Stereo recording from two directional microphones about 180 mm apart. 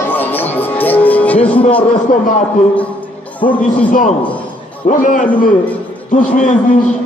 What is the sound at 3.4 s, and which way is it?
A man's voice, 45° left (ahead or behind).